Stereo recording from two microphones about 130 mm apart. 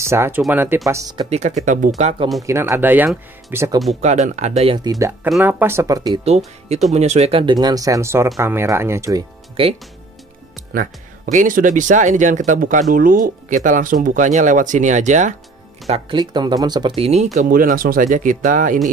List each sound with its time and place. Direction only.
0.0 s speech: 20° right (ahead or behind)
1.3 s speech: 60° right (ahead or behind)
2.4 s speech: 20° right (ahead or behind)
4.0 s speech: 60° right (ahead or behind)
4.7 s speech: 30° right (ahead or behind)
5.4 s speech: 15° right (ahead or behind)
6.2 s speech: 55° right (ahead or behind)
7.5 s speech: 30° right (ahead or behind)
9.6 s speech: 45° right (ahead or behind)
11.3 s speech: 85° right
12.9 s speech: 90° right; by 15.3 s 70° right (ahead or behind)
16.2 s speech: 35° right (ahead or behind); by 18.8 s 90° right